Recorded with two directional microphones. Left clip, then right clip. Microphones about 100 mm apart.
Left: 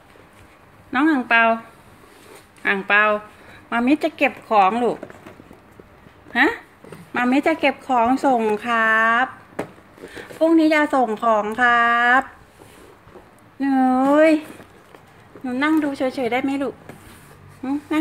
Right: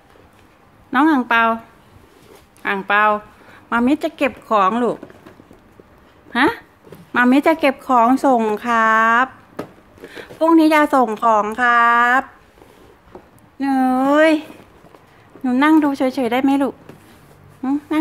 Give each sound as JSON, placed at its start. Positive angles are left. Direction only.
{"t": 0.9, "sound": "a woman's voice", "side_deg": -50}
{"t": 2.6, "sound": "a woman's voice", "side_deg": -35}
{"t": 3.6, "sound": "a woman's voice", "side_deg": -55}
{"t": 6.3, "sound": "a woman's voice", "side_deg": -60}
{"t": 10.4, "sound": "a woman's voice", "side_deg": -85}
{"t": 13.6, "sound": "speech", "side_deg": -90}
{"t": 15.6, "sound": "speech", "side_deg": -90}
{"t": 17.6, "sound": "a woman's voice", "side_deg": -45}